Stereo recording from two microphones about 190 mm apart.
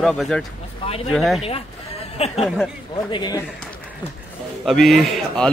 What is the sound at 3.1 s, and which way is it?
Speech, 20° left (ahead or behind).